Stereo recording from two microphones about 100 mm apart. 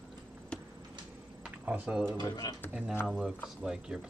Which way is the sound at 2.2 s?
40° left (ahead or behind).